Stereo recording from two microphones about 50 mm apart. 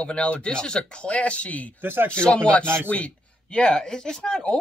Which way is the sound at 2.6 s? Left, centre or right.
Right.